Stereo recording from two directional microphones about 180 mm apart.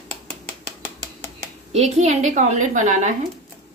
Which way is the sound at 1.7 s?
40° right (ahead or behind).